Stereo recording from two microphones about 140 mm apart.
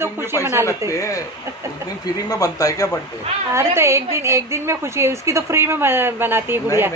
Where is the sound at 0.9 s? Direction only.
25° left (ahead or behind).